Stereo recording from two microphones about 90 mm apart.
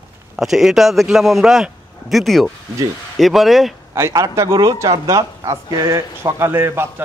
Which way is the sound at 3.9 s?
35° right (ahead or behind).